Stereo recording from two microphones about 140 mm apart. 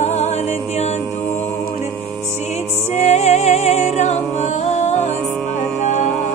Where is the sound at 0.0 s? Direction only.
55° left (ahead or behind).